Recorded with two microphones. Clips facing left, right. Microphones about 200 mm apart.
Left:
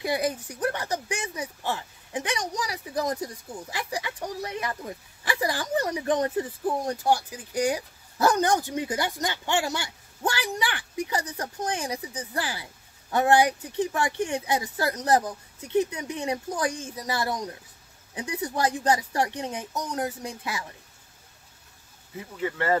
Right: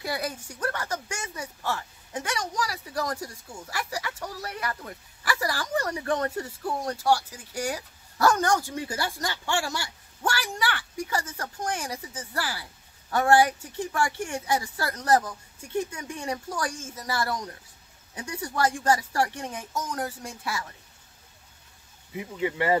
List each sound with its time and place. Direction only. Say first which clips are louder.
0.0 s speech: left 5 dB; 20° left (ahead or behind)
22.1 s speech: right 2 dB; 15° right (ahead or behind)